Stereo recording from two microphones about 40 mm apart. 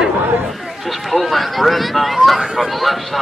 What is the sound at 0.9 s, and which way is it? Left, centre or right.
Speech, centre.